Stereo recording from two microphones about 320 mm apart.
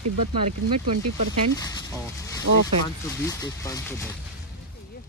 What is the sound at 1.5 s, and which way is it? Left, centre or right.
Speech, centre.